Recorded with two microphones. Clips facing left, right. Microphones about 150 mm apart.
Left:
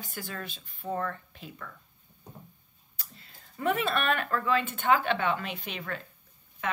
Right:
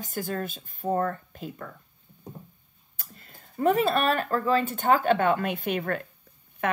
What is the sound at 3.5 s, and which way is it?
A woman's voice, 40° right (ahead or behind).